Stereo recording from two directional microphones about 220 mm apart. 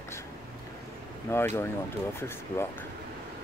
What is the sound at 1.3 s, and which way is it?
Speech, 10° left (ahead or behind).